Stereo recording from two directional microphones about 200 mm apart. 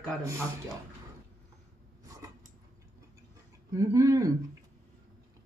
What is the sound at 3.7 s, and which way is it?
Speech, 15° right (ahead or behind).